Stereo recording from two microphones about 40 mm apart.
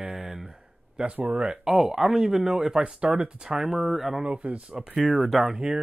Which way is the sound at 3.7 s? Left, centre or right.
Centre.